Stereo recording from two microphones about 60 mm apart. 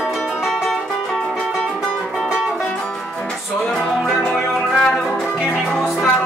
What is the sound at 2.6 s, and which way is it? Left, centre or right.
Music, centre.